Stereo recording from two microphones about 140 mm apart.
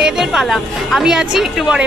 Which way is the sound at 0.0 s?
5° right (ahead or behind).